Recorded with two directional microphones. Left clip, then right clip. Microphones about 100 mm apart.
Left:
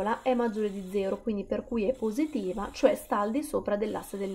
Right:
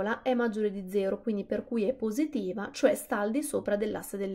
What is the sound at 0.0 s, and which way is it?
Speech, 25° right (ahead or behind).